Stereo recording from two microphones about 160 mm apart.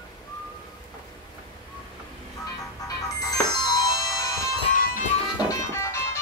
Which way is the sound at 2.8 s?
20° left (ahead or behind).